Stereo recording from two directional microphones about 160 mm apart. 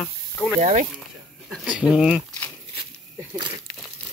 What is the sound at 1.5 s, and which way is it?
Speech, 5° right (ahead or behind).